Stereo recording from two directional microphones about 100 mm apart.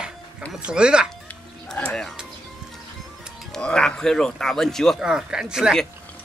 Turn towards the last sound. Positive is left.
turn(degrees=-5)  # may be behind; listen again after turning